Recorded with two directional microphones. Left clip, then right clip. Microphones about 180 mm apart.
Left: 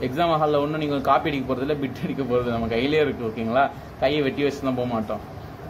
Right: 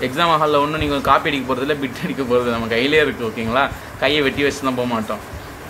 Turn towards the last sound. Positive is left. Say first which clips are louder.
# right 5 dB
turn(degrees=0)  # may be behind; listen again after turning